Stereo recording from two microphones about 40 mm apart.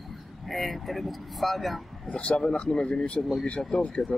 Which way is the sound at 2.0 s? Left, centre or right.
Left.